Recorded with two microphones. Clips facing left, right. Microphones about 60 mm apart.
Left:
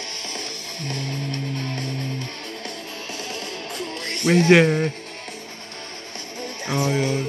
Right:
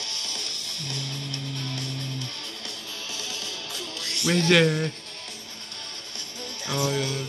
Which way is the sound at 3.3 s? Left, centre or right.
Left.